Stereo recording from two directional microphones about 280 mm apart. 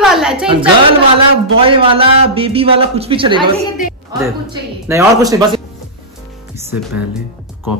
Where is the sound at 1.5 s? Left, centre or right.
Centre.